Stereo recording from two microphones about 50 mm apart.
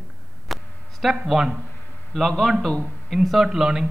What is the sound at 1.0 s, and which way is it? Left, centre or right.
Speech, centre.